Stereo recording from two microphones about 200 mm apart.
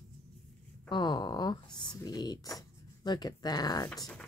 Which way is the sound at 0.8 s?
20° left (ahead or behind).